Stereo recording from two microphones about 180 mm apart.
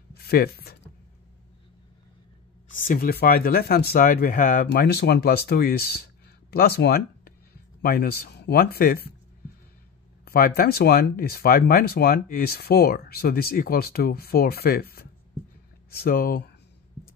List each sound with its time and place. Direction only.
0.1 s speech: 60° left (ahead or behind)
2.7 s speech: 45° left (ahead or behind)
10.2 s speech: 60° left (ahead or behind)